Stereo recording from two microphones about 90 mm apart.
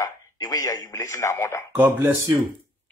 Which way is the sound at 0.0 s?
45° left (ahead or behind).